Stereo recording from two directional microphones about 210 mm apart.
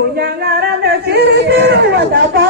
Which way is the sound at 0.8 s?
50° right (ahead or behind).